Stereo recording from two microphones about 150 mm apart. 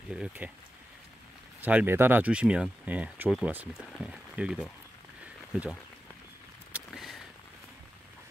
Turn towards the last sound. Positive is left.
turn(degrees=0)  # may be behind; listen again after turning